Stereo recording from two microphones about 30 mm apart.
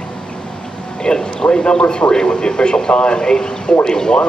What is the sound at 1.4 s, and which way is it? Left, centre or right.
A man's voice, left.